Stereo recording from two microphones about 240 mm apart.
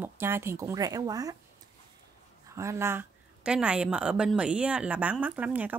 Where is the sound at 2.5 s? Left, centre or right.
Centre.